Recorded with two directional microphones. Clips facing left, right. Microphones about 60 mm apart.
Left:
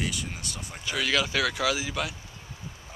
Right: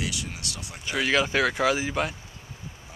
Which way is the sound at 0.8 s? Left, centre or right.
Right.